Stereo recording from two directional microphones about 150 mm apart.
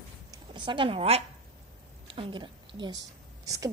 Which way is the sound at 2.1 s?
35° right (ahead or behind).